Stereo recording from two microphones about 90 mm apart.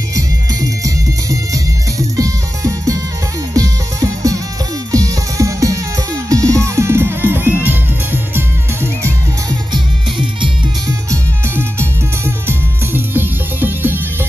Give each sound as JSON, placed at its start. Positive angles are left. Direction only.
{"t": 0.1, "sound": "music", "side_deg": -40}
{"t": 9.5, "sound": "music", "side_deg": -60}
{"t": 12.4, "sound": "music", "side_deg": -25}